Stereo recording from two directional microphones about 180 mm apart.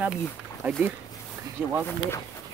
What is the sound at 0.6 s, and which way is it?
Speech, 5° right (ahead or behind).